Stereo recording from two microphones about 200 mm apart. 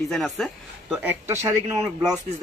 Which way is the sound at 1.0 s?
10° right (ahead or behind).